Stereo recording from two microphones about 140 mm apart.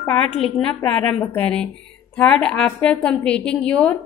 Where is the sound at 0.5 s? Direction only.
10° left (ahead or behind).